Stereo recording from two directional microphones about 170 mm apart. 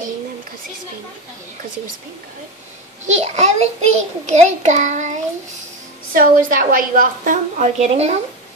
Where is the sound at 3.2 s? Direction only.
40° right (ahead or behind).